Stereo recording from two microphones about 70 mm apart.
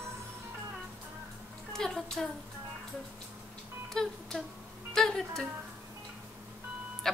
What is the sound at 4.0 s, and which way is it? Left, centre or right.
Speech, centre.